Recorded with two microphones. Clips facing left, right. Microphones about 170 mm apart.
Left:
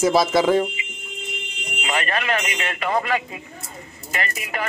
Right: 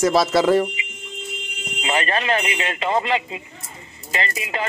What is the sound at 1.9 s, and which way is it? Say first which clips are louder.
Speech: right 2 dB; 30° right (ahead or behind).